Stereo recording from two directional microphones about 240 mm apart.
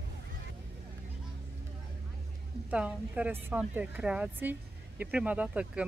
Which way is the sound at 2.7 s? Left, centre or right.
Centre.